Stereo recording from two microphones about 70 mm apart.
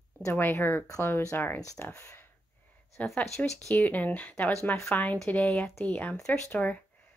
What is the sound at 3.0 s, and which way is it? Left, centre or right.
A woman's voice, left.